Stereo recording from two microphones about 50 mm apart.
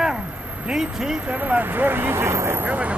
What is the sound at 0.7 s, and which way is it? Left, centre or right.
Speech, centre.